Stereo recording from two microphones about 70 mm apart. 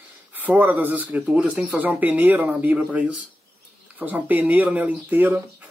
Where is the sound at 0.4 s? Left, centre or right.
Right.